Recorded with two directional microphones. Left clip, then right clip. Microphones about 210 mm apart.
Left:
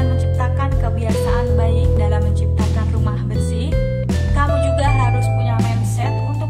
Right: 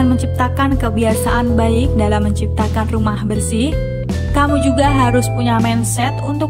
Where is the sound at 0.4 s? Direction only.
35° right (ahead or behind).